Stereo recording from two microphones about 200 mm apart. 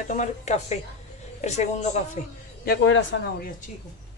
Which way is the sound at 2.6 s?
60° left (ahead or behind).